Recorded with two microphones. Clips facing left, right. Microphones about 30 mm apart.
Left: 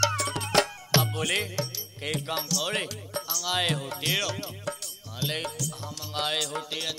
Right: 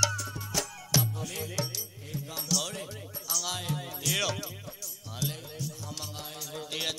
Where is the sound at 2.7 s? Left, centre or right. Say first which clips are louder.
Left 9 dB; left.